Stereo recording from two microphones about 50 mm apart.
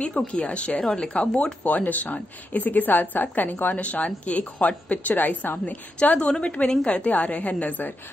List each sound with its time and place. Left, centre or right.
0.3 s a woman's voice: left
0.7 s a woman's voice: centre; by 5.5 s left
5.7 s a woman's voice: left